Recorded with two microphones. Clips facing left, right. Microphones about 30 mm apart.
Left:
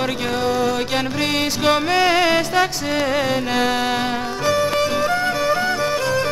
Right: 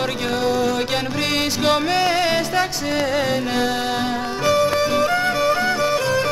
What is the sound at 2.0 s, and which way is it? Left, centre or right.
Music, left.